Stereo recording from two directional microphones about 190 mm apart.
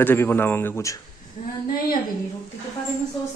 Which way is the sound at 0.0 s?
10° left (ahead or behind).